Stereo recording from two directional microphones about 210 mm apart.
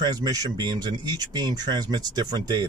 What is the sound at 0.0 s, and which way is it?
Speech, 15° right (ahead or behind).